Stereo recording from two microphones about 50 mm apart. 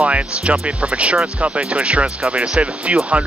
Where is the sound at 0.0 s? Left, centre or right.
Right.